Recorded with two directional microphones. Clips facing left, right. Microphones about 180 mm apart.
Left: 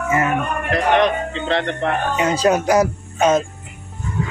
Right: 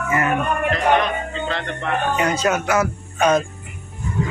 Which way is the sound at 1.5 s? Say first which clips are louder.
Left 6 dB; 60° left (ahead or behind).